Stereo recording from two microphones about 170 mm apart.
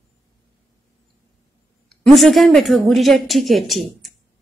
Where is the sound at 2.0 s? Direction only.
Centre (ahead or behind).